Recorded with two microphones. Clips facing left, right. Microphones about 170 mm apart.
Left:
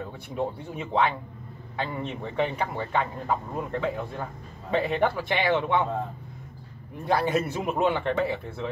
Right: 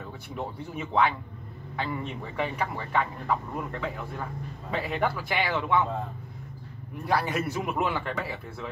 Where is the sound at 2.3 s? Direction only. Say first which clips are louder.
Left 3 dB; 25° left (ahead or behind).